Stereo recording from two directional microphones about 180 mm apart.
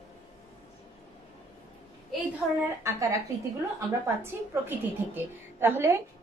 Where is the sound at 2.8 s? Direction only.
15° right (ahead or behind).